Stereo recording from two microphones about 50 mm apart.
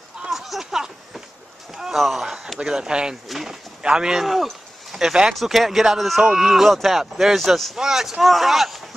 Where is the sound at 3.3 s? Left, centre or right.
Centre.